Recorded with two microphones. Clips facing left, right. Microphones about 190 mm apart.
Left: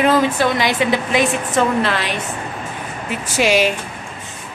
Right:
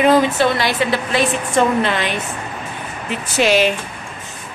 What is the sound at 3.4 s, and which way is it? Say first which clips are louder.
Speech: right 1 dB; 10° left (ahead or behind).